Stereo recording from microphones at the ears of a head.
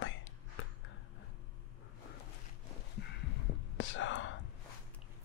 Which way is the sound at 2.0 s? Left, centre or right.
Left.